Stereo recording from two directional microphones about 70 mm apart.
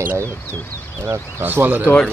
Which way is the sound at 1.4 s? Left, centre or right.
Right.